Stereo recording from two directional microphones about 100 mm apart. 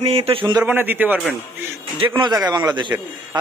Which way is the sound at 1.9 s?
55° right (ahead or behind).